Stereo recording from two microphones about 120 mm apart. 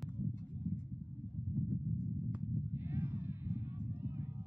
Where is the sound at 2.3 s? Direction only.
15° right (ahead or behind).